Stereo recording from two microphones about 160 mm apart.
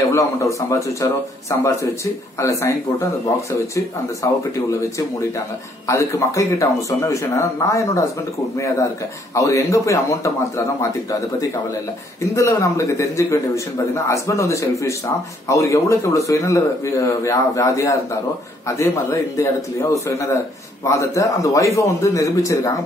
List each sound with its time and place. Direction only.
0.1 s a man's voice: 20° left (ahead or behind)
9.3 s a man's voice: 20° left (ahead or behind)